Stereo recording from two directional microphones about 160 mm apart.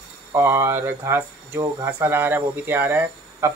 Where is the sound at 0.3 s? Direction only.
15° right (ahead or behind).